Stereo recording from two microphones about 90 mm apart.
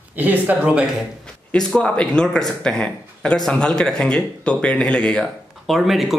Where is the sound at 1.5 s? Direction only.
10° left (ahead or behind).